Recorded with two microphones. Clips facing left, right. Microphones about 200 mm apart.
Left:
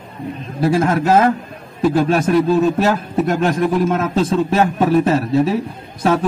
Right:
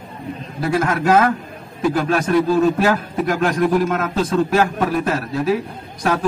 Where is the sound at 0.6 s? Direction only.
25° left (ahead or behind).